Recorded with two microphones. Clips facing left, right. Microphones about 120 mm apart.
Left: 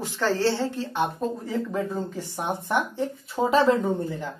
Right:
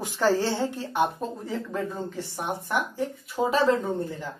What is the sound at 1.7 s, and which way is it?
Speech, 15° left (ahead or behind).